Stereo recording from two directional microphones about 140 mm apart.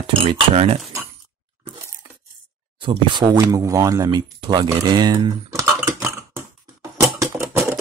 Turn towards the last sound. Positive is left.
turn(degrees=-20)  # may be behind; listen again after turning